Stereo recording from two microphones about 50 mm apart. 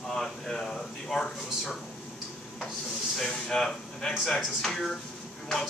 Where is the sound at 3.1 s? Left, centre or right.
Centre.